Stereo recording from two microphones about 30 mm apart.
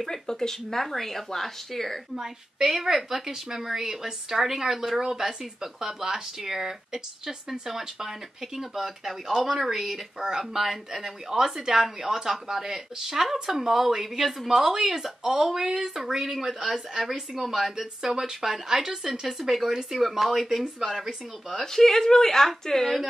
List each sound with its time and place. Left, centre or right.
0.0 s speech: centre
2.1 s a woman's voice: centre
21.5 s speech: centre